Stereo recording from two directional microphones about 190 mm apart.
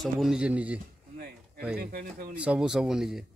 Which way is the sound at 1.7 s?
50° right (ahead or behind).